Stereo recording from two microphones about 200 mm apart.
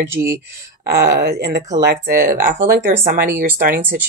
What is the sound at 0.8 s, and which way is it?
Speech, 50° right (ahead or behind).